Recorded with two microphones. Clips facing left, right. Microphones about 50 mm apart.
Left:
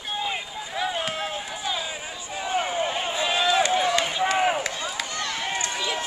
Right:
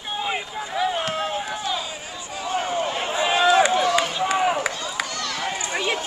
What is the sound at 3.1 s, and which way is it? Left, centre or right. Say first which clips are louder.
Run: right 7 dB; centre.